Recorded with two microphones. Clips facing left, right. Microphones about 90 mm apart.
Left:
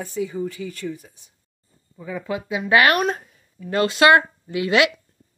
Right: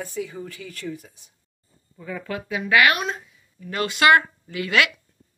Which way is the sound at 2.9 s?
50° left (ahead or behind).